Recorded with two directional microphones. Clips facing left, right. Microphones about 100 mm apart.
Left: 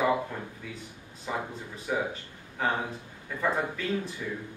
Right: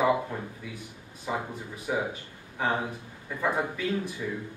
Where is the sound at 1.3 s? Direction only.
10° right (ahead or behind).